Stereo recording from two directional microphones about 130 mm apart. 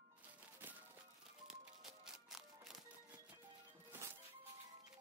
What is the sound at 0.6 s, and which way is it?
Music, 15° right (ahead or behind).